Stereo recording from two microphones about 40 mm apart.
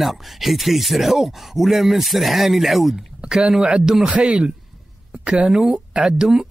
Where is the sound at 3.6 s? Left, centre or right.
Centre.